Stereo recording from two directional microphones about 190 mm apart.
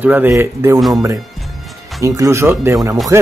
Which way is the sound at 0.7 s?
Centre (ahead or behind).